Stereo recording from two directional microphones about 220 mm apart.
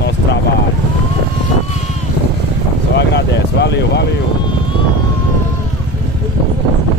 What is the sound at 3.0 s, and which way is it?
Speech, 50° left (ahead or behind).